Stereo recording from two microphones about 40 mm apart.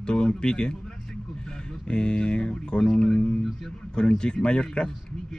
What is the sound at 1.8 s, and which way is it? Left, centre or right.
Speech, left.